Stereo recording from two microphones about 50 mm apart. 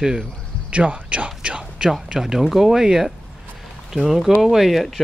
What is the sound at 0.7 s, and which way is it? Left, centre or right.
Speech, right.